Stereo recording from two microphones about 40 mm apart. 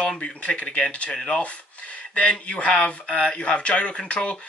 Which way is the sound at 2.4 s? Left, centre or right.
Left.